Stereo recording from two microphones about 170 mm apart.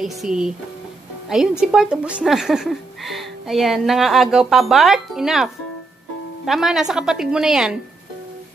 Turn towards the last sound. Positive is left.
turn(degrees=-5)  # may be behind; listen again after turning